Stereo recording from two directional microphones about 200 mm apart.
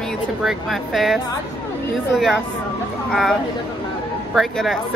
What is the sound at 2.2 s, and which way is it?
A woman's voice, centre (ahead or behind).